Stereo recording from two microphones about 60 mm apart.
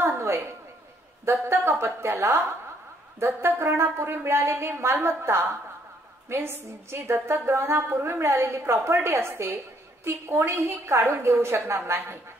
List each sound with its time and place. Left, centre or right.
0.0 s a sound: right
1.2 s a woman's voice: right
9.3 s a woman's voice: right